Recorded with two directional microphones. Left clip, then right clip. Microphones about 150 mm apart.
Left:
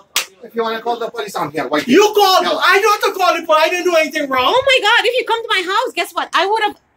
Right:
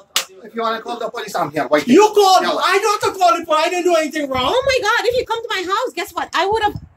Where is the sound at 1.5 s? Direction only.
5° right (ahead or behind).